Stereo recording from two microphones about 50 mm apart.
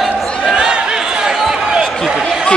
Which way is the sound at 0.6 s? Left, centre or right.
Centre.